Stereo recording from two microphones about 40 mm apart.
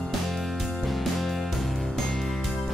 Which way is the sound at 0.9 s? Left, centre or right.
Centre.